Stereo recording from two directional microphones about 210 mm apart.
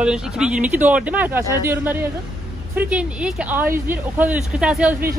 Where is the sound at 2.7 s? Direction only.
5° right (ahead or behind).